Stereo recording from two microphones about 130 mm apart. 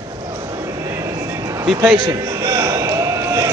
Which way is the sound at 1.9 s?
30° right (ahead or behind).